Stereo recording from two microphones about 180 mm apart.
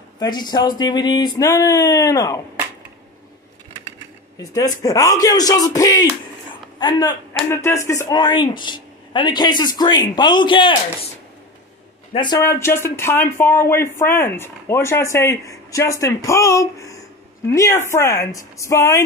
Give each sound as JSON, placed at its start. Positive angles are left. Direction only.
{"t": 0.2, "sound": "speech", "side_deg": 25}
{"t": 4.8, "sound": "speech", "side_deg": 20}
{"t": 12.1, "sound": "a man's voice", "side_deg": 25}
{"t": 12.4, "sound": "speech", "side_deg": 15}